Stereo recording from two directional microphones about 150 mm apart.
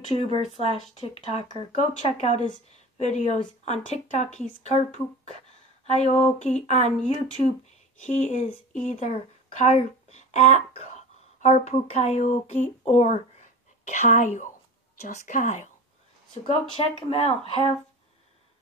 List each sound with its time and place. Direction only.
0.1 s speech: 40° left (ahead or behind)
9.7 s a sound: 45° left (ahead or behind)
11.6 s speech: 45° left (ahead or behind)
13.4 s a sound: 55° left (ahead or behind)
15.0 s a woman's voice: 55° left (ahead or behind)
16.4 s speech: 45° left (ahead or behind)